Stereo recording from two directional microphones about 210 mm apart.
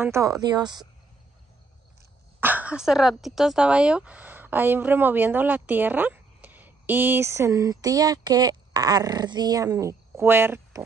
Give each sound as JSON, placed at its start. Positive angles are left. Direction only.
{"t": 0.0, "sound": "speech", "side_deg": -15}
{"t": 2.4, "sound": "speech", "side_deg": -5}